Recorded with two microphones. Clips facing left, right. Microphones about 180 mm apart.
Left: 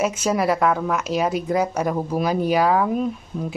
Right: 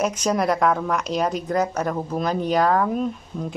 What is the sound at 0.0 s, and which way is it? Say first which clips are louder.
Speech: left 1 dB; 5° left (ahead or behind).